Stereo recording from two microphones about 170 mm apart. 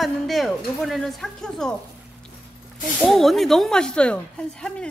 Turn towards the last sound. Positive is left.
turn(degrees=5)  # may be behind; listen again after turning